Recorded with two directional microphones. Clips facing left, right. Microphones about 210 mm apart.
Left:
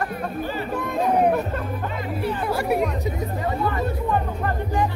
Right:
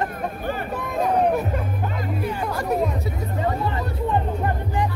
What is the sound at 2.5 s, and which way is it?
Chatter, 10° left (ahead or behind).